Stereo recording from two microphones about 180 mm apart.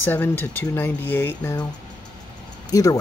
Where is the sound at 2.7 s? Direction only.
20° left (ahead or behind).